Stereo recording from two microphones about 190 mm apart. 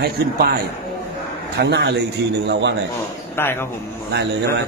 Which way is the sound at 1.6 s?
60° right (ahead or behind).